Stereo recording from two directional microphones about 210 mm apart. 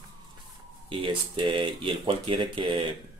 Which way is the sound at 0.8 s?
25° right (ahead or behind).